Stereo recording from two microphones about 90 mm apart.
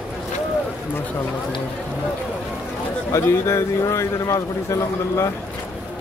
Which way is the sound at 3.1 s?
30° left (ahead or behind).